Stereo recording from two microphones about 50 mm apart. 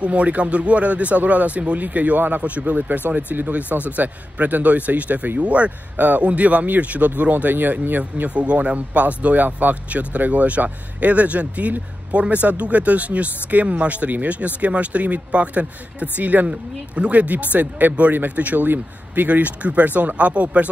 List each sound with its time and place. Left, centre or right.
0.0 s speech: right
8.0 s speech: right